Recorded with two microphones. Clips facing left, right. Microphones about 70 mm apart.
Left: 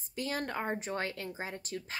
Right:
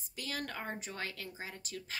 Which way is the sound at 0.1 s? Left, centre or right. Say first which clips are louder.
Left 6 dB; left.